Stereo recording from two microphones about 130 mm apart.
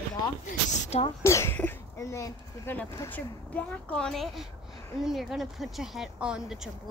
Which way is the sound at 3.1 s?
10° left (ahead or behind).